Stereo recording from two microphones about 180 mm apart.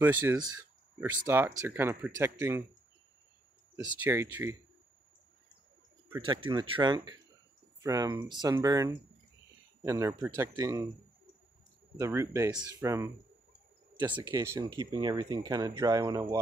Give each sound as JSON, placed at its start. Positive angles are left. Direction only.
{"t": 0.0, "sound": "speech", "side_deg": -10}
{"t": 0.4, "sound": "speech", "side_deg": -20}
{"t": 4.0, "sound": "speech", "side_deg": -10}
{"t": 6.2, "sound": "speech", "side_deg": -30}
{"t": 12.0, "sound": "speech", "side_deg": -15}